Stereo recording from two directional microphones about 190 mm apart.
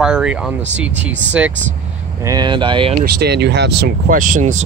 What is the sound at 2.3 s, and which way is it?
Speech, 20° right (ahead or behind).